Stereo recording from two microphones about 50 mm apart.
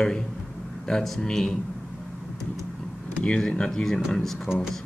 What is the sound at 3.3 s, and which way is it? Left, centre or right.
Speech, centre.